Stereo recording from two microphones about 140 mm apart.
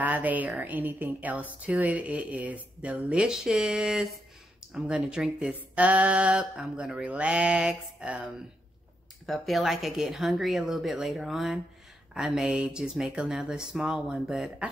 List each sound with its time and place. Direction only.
0.0 s speech: 10° right (ahead or behind)